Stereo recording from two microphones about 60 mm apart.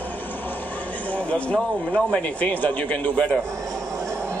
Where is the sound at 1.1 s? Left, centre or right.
Left.